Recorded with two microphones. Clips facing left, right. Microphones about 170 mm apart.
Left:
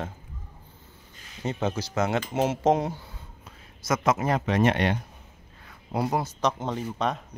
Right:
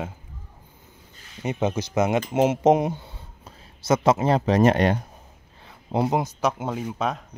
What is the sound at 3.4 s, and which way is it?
Speech, 30° right (ahead or behind).